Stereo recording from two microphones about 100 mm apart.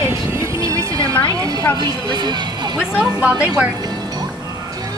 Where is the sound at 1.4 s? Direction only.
40° right (ahead or behind).